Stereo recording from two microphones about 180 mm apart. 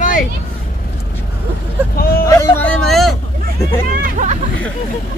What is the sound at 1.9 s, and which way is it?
Vehicle, 55° left (ahead or behind).